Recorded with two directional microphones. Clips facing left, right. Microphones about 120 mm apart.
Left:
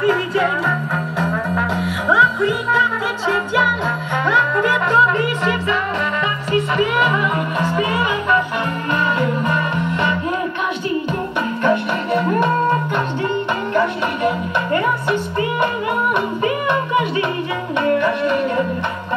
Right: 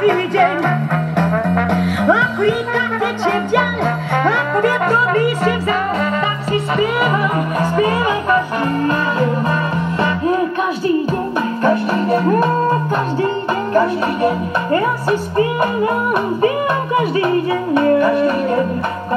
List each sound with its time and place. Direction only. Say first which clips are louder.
0.0 s music: right 4 dB; 65° right (ahead or behind); by 5.8 s 45° right (ahead or behind)
6.5 s music: even; 35° right (ahead or behind)
13.7 s music: right 4 dB; 35° right (ahead or behind)